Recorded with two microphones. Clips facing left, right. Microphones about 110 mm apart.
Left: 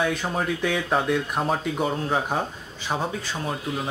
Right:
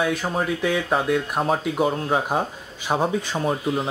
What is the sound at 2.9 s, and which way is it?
Speech, 15° right (ahead or behind).